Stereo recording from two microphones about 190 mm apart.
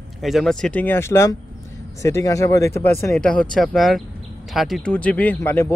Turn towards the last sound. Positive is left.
turn(degrees=10)  # may be behind; listen again after turning